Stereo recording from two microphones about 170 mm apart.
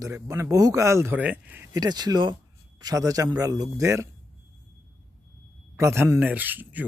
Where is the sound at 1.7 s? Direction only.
25° right (ahead or behind).